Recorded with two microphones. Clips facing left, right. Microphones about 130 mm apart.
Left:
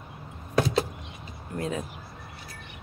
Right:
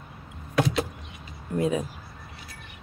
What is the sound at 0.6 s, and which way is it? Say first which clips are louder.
Vehicle: even; 35° left (ahead or behind).